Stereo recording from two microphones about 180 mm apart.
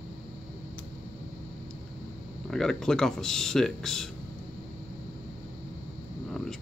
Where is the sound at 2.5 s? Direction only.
5° left (ahead or behind).